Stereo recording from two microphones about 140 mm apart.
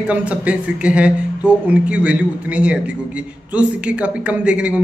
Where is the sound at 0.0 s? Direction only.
10° right (ahead or behind).